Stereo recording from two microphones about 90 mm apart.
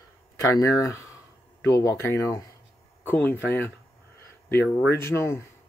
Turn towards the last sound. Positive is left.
turn(degrees=30)  # may be behind; listen again after turning